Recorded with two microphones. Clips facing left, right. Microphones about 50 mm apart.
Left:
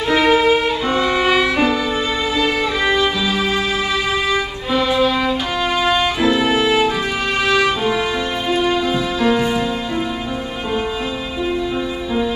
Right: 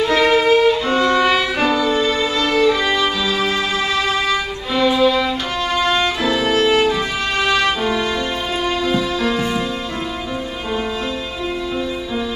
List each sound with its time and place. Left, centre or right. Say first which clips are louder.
0.1 s violin: left 2 dB; centre
4.3 s violin: left 1 dB; centre
5.8 s music: left 1 dB; centre